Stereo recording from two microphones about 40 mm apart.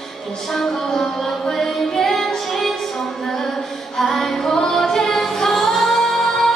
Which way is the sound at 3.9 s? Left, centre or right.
Centre.